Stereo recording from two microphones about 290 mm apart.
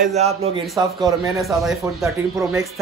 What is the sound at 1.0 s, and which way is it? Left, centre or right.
A man's voice, centre.